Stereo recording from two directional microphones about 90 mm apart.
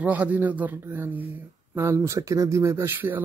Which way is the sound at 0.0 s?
15° right (ahead or behind).